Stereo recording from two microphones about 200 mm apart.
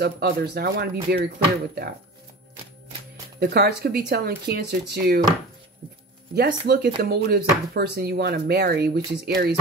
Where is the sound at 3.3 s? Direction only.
50° right (ahead or behind).